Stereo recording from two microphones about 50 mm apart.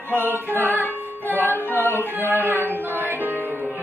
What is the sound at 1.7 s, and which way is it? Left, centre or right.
Singing, left.